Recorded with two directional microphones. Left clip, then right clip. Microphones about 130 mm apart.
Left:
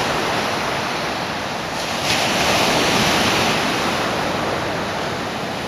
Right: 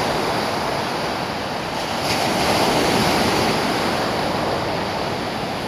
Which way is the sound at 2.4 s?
45° left (ahead or behind).